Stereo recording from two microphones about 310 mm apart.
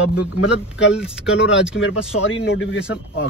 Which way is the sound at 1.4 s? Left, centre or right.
Left.